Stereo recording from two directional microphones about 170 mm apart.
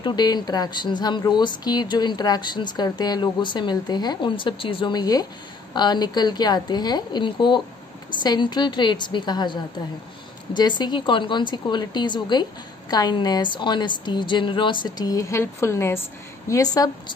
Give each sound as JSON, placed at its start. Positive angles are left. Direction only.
{"t": 0.0, "sound": "speech", "side_deg": 25}